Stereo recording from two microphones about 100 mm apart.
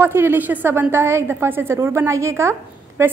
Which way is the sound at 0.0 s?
20° right (ahead or behind).